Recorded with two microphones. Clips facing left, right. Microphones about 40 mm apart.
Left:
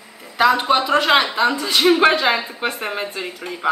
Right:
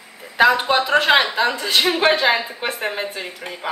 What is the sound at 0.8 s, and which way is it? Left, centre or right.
Speech, centre.